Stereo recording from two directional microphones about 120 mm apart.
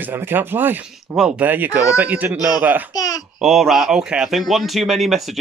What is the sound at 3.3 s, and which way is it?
Speech, centre (ahead or behind).